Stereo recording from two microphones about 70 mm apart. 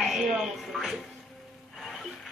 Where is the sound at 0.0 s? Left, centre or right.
Centre.